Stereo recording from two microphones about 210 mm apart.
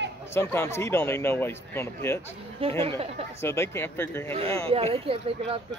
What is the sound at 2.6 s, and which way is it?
Speech, 25° right (ahead or behind).